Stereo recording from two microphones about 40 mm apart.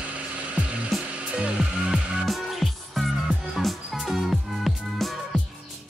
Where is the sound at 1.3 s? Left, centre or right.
Right.